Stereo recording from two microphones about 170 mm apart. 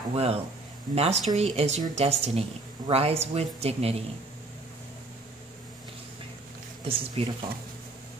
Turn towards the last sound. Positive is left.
turn(degrees=-35)  # may be behind; listen again after turning